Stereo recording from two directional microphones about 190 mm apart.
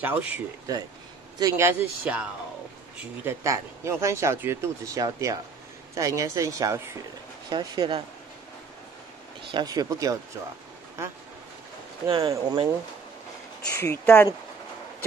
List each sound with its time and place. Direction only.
0.0 s speech: 10° right (ahead or behind)
3.3 s speech: 15° right (ahead or behind)
9.5 s speech: 20° right (ahead or behind)
12.1 s speech: 25° right (ahead or behind)
13.7 s speech: 15° left (ahead or behind)